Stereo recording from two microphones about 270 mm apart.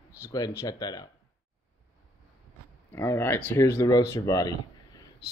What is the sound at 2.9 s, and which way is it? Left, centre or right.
Speech, centre.